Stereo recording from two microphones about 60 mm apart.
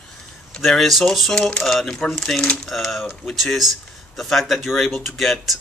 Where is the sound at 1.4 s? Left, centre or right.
Centre.